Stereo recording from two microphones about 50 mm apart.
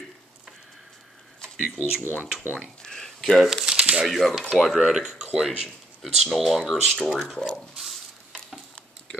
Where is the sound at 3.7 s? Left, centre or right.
Right.